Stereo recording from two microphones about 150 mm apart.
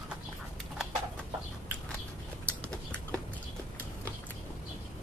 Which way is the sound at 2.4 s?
10° left (ahead or behind).